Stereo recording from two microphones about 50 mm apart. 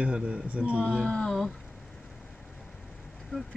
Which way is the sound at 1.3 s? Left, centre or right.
Centre.